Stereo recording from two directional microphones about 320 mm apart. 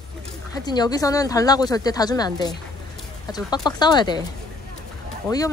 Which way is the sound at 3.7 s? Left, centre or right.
Centre.